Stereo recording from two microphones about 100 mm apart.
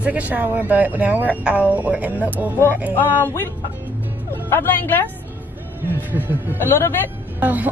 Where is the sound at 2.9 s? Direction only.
20° left (ahead or behind).